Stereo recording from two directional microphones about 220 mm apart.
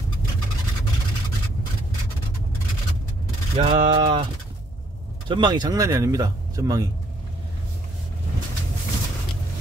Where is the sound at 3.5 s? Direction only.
25° right (ahead or behind).